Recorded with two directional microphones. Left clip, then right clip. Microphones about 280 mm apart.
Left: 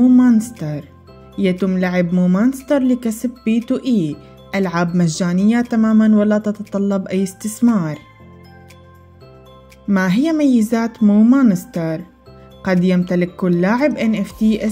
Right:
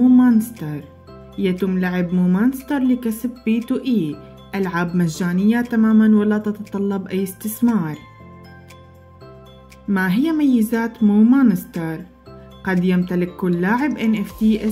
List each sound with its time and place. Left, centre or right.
0.0 s music: centre
1.3 s speech: centre
9.8 s speech: left